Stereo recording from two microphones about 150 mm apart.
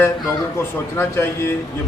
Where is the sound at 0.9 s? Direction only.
15° left (ahead or behind).